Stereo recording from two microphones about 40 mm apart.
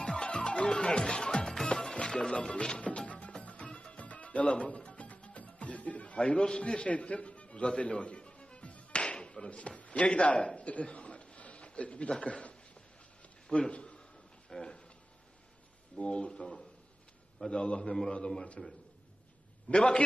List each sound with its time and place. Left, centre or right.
0.2 s music: left
1.4 s music: centre
2.3 s a man's voice: left
2.6 s music: left
6.1 s a man's voice: left
6.9 s music: left
13.5 s a sound: left
16.0 s a man's voice: left
19.7 s a man's voice: left